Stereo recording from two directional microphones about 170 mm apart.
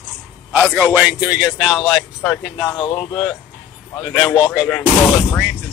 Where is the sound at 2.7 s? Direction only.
30° left (ahead or behind).